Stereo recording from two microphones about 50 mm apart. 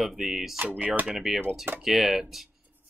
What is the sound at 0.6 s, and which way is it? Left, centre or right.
Speech, right.